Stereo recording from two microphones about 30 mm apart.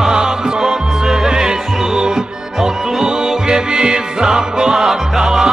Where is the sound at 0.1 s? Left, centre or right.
Centre.